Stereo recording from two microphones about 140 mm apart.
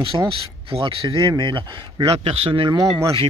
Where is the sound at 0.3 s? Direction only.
40° right (ahead or behind).